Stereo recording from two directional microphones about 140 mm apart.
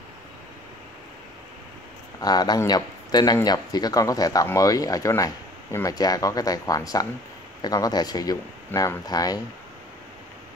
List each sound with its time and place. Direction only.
2.1 s speech: 30° left (ahead or behind)